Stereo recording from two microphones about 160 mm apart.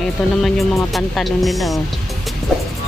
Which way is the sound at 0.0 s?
Centre (ahead or behind).